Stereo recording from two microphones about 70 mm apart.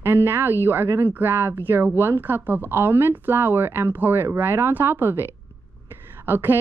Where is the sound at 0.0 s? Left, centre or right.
Right.